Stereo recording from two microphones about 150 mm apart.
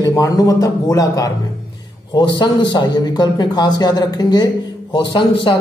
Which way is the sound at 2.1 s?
30° left (ahead or behind).